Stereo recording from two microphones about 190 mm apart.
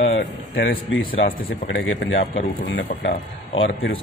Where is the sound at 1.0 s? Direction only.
50° left (ahead or behind).